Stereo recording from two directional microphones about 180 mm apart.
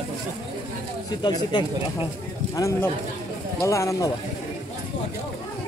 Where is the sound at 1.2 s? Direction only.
25° left (ahead or behind).